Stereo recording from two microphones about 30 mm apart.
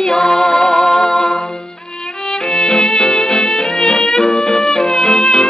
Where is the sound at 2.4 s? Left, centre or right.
Left.